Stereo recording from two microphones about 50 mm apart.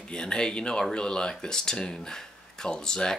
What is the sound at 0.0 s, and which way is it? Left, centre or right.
Speech, centre.